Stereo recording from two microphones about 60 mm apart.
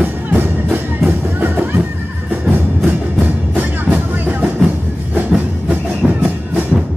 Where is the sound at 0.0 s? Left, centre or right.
Right.